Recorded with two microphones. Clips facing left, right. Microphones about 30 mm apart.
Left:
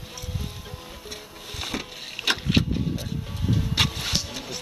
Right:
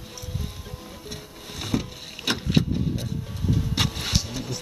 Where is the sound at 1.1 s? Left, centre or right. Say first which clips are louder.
Left 1 dB; centre.